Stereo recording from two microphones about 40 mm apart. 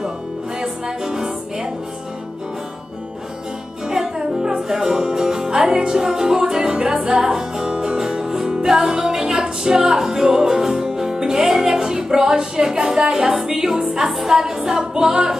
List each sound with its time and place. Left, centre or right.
0.6 s music: centre
3.9 s music: centre